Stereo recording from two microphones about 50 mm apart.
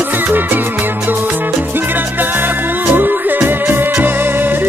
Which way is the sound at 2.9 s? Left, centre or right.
Right.